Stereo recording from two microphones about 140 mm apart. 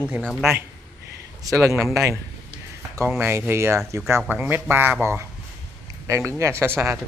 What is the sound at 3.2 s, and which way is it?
Speech, 15° right (ahead or behind).